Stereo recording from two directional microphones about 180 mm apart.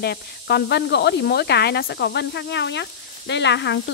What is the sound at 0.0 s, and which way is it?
Speech, 65° left (ahead or behind).